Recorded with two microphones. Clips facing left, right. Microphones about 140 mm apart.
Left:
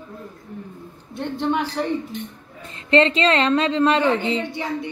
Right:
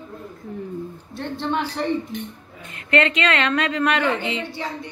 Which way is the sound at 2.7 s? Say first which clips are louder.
Left 3 dB; 30° left (ahead or behind).